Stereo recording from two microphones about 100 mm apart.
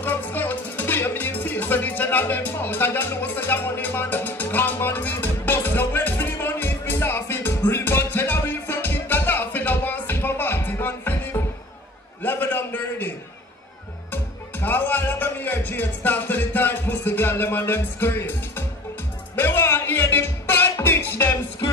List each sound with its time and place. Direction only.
0.0 s music: 20° left (ahead or behind)
12.2 s a sound: 20° left (ahead or behind)
14.1 s music: 20° left (ahead or behind)
19.3 s music: 20° left (ahead or behind)